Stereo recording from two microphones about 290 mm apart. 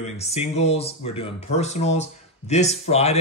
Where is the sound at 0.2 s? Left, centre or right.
Left.